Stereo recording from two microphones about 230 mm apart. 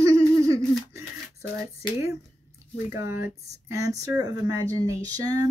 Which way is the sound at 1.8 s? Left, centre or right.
Centre.